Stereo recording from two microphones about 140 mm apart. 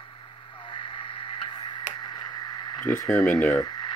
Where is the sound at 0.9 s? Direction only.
40° left (ahead or behind).